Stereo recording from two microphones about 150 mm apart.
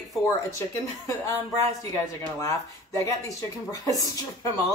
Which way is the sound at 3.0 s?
20° left (ahead or behind).